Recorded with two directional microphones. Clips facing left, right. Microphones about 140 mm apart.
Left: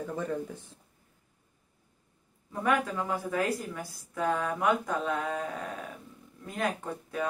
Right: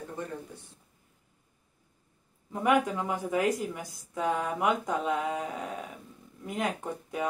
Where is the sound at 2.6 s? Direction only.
15° right (ahead or behind).